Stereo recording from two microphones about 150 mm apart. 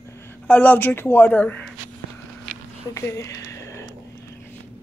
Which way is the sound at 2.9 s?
20° left (ahead or behind).